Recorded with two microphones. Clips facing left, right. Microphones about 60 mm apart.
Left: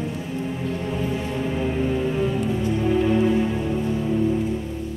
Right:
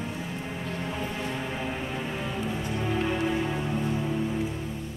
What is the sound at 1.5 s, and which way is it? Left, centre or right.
Music, centre.